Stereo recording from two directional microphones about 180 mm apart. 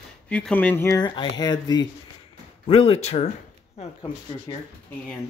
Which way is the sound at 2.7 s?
30° left (ahead or behind).